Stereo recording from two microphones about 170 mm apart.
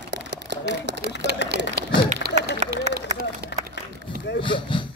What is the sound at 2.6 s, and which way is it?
Run, 45° right (ahead or behind).